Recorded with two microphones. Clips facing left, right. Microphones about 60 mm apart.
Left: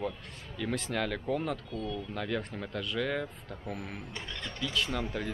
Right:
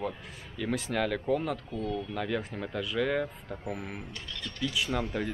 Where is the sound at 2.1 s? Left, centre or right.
Centre.